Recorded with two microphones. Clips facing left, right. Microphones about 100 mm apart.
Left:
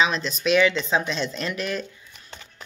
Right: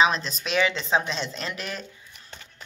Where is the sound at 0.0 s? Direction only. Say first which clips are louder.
Even; 40° right (ahead or behind).